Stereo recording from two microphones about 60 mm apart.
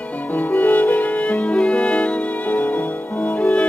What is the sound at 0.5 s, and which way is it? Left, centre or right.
Music, left.